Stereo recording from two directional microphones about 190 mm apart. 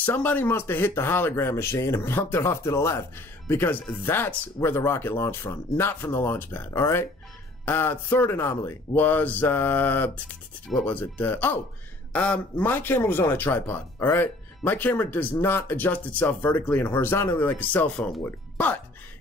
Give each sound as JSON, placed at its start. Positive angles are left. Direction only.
{"t": 0.0, "sound": "a man's voice", "side_deg": 10}